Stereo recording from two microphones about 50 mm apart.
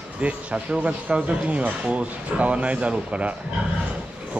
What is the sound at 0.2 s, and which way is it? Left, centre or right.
Speech, right.